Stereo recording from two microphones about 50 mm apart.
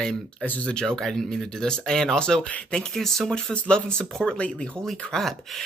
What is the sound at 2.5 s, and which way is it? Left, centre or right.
Speech, left.